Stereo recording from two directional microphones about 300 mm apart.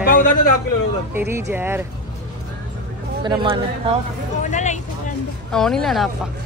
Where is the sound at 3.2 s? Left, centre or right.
Centre.